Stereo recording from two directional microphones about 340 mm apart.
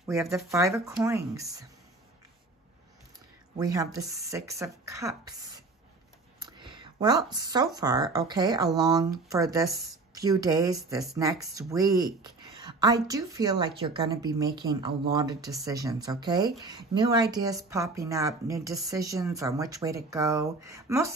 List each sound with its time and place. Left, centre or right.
0.0 s a woman's voice: centre
3.5 s a woman's voice: centre
6.4 s a woman's voice: centre